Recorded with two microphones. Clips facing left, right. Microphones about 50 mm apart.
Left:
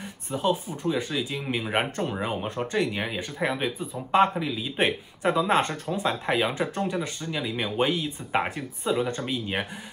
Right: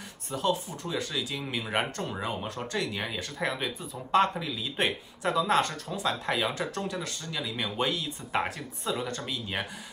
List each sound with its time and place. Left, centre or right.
0.3 s speech: centre